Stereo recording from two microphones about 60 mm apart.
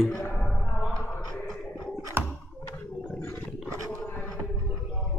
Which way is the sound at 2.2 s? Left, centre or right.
Right.